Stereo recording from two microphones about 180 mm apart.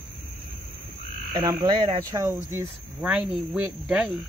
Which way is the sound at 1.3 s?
25° right (ahead or behind).